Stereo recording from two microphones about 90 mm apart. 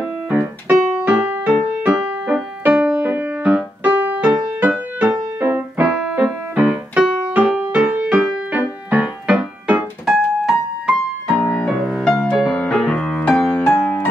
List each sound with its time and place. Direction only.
0.0 s keyboard: 20° right (ahead or behind)
2.7 s music: 15° right (ahead or behind)
5.8 s keyboard: 5° right (ahead or behind)
8.5 s music: 15° right (ahead or behind)
11.8 s music: 5° left (ahead or behind)